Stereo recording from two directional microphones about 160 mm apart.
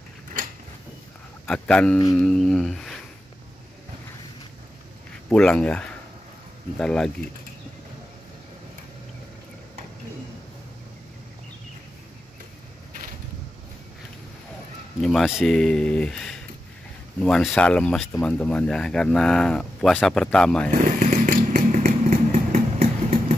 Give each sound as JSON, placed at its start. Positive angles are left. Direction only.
{"t": 1.4, "sound": "speech", "side_deg": 5}
{"t": 2.1, "sound": "humming", "side_deg": 5}
{"t": 5.3, "sound": "speech", "side_deg": 5}
{"t": 15.0, "sound": "speech", "side_deg": 0}
{"t": 20.7, "sound": "vehicle", "side_deg": -50}